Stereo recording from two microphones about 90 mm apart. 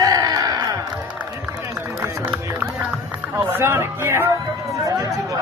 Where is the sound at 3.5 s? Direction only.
30° right (ahead or behind).